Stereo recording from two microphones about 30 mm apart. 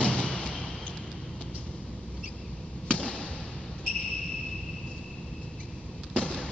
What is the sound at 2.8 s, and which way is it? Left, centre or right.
Basketball bounce, left.